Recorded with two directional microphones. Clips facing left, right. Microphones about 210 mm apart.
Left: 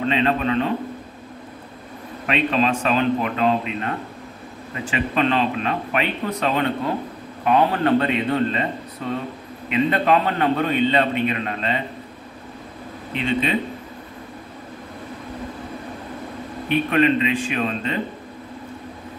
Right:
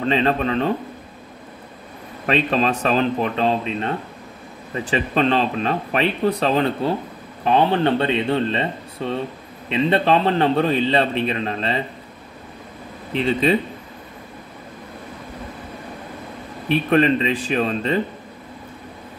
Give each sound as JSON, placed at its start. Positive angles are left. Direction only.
{"t": 0.1, "sound": "a man's voice", "side_deg": -35}
{"t": 2.2, "sound": "a man's voice", "side_deg": -35}
{"t": 13.2, "sound": "a man's voice", "side_deg": -35}
{"t": 16.6, "sound": "a man's voice", "side_deg": -35}